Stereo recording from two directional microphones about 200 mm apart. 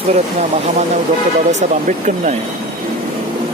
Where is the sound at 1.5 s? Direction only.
35° right (ahead or behind).